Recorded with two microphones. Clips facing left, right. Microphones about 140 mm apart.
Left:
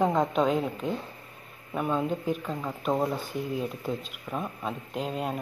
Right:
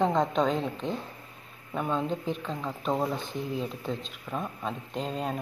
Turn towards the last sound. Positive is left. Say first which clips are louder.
# left 1 dB
turn(degrees=5)  # may be behind; listen again after turning